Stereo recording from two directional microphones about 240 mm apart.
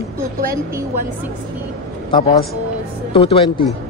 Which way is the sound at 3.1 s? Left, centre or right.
Left.